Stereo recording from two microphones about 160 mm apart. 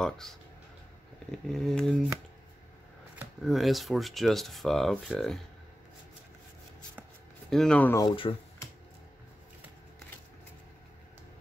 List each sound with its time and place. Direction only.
0.0 s speech: centre (ahead or behind)
3.2 s speech: centre (ahead or behind)
7.4 s speech: 5° left (ahead or behind)
8.0 s speech: 35° left (ahead or behind)